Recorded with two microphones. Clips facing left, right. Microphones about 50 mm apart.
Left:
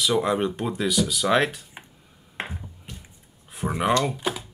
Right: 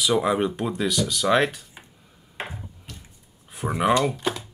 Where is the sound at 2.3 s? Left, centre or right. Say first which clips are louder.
Left 1 dB; centre.